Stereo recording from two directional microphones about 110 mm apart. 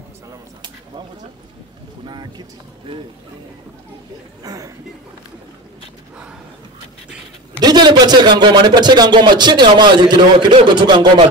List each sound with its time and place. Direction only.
0.3 s a sound: 40° right (ahead or behind)
2.0 s vehicle: 40° right (ahead or behind)
4.4 s a man's voice: 30° right (ahead or behind)
7.6 s a man's voice: 40° right (ahead or behind)